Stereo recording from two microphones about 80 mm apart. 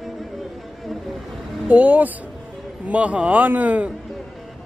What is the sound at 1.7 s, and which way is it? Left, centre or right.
A man's voice, centre.